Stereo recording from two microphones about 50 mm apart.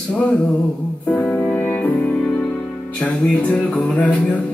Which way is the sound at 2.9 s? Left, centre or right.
Centre.